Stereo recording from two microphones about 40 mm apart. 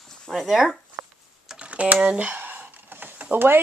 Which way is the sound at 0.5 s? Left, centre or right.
Centre.